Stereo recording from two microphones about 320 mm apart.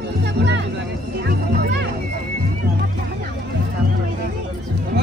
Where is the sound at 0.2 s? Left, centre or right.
Right.